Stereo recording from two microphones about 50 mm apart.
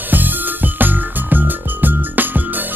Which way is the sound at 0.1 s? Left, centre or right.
Right.